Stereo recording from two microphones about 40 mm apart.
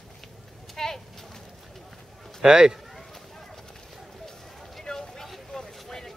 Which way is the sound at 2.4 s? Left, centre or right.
Centre.